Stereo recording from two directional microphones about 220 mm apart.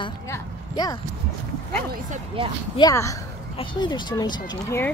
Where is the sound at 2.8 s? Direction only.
15° left (ahead or behind).